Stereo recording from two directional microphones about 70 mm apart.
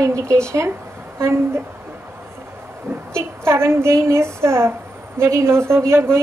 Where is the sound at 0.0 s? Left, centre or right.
Right.